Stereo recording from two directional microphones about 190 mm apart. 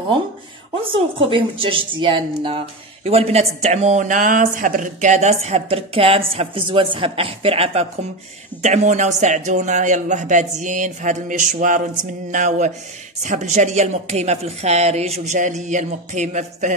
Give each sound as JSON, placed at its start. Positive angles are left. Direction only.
{"t": 0.9, "sound": "a woman's voice", "side_deg": -30}